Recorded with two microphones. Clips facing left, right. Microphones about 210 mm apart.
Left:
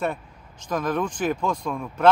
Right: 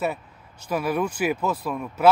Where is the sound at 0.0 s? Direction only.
5° right (ahead or behind).